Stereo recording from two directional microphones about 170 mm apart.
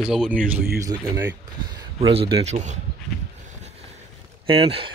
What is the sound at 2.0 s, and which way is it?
Speech, 30° right (ahead or behind).